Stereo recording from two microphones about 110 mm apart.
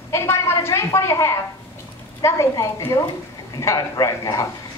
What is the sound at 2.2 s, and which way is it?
A woman's voice, 30° left (ahead or behind).